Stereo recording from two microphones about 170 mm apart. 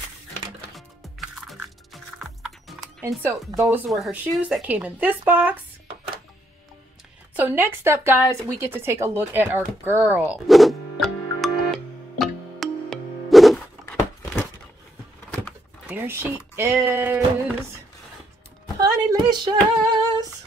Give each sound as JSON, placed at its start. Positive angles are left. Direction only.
{"t": 0.7, "sound": "music", "side_deg": 0}
{"t": 3.0, "sound": "speech", "side_deg": -15}
{"t": 3.8, "sound": "speech", "side_deg": -5}
{"t": 7.3, "sound": "speech", "side_deg": -10}
{"t": 10.3, "sound": "music", "side_deg": 0}
{"t": 15.9, "sound": "speech", "side_deg": -15}
{"t": 18.8, "sound": "female singing", "side_deg": -20}